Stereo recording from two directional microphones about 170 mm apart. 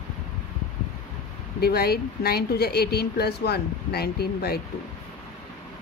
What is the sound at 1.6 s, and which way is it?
Speech, 65° left (ahead or behind).